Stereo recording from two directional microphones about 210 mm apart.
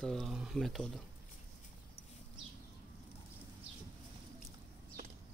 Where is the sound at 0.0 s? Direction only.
Centre (ahead or behind).